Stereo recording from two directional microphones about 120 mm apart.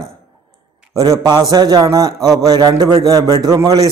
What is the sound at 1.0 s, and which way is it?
A man's voice, 35° right (ahead or behind).